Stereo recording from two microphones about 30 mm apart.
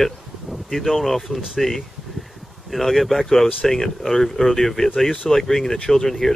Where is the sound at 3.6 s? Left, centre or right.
Centre.